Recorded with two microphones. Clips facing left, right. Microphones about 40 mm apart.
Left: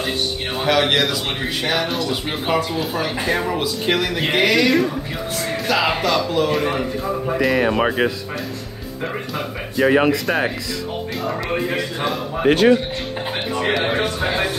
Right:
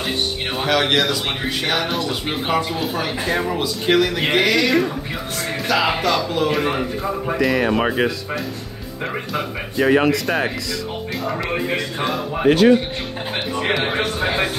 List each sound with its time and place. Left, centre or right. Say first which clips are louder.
0.6 s speech: left 1 dB; centre
7.4 s speech: left 1 dB; centre
11.5 s speech: even; centre
12.4 s speech: right 1 dB; left
13.9 s a man's voice: even; centre